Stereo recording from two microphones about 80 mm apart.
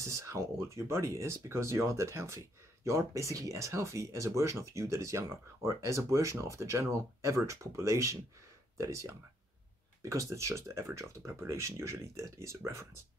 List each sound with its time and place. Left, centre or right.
0.0 s speech: right